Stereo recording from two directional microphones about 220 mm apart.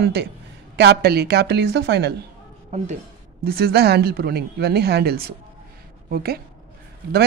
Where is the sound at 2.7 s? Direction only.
35° right (ahead or behind).